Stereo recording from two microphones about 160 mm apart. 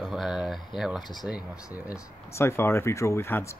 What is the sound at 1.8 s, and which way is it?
Speech, 20° left (ahead or behind).